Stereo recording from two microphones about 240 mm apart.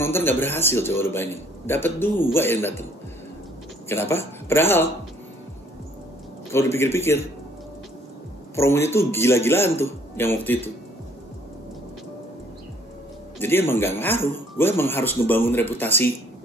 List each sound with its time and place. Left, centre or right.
0.0 s a man's voice: centre
3.9 s a man's voice: centre
6.5 s a man's voice: centre
8.5 s a man's voice: centre
13.4 s a man's voice: centre